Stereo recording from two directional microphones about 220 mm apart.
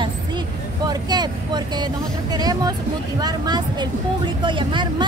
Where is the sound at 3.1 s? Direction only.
20° right (ahead or behind).